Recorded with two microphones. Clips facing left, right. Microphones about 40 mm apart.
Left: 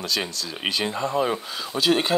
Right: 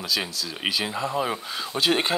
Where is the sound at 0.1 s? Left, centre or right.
Centre.